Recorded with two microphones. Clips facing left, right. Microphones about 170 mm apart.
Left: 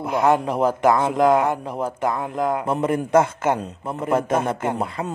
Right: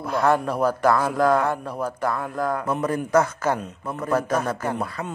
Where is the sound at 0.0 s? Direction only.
15° left (ahead or behind).